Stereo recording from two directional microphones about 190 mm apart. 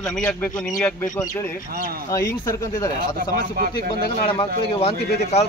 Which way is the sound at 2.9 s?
50° right (ahead or behind).